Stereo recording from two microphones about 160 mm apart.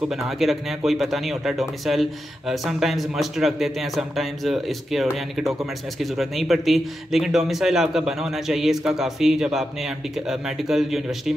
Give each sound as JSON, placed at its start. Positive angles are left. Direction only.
{"t": 0.1, "sound": "speech", "side_deg": 0}